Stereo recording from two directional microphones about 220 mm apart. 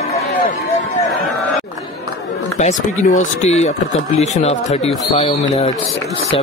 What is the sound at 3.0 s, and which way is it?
Speech, 35° left (ahead or behind).